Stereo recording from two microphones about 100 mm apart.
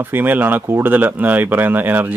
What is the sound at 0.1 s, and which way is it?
Speech, 20° right (ahead or behind).